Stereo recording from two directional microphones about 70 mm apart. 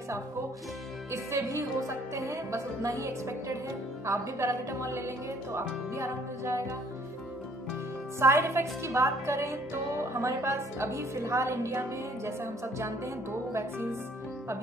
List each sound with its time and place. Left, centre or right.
1.1 s speech: right
8.2 s speech: right